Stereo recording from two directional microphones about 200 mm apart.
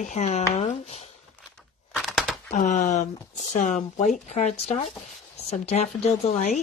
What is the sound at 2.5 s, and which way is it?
Speech, 40° left (ahead or behind).